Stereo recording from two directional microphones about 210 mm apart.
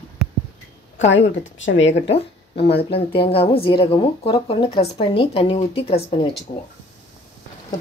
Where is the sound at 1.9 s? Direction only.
25° left (ahead or behind).